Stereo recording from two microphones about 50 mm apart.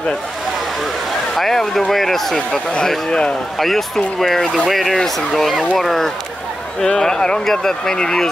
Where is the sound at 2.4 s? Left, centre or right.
Centre.